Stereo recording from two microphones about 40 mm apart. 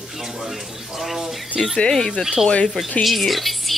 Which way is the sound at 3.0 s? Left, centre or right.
Centre.